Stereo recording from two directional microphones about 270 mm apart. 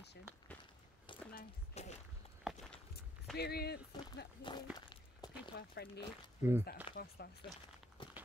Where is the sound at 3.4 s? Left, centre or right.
Left.